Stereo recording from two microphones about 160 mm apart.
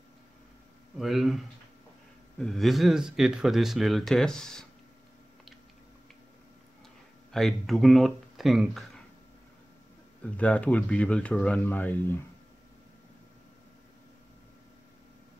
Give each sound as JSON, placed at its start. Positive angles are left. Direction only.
{"t": 0.9, "sound": "speech", "side_deg": 0}
{"t": 7.3, "sound": "speech", "side_deg": 0}
{"t": 10.3, "sound": "speech", "side_deg": 10}